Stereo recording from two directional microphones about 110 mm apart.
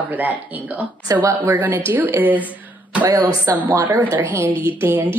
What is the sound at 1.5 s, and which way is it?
Speech, 15° right (ahead or behind).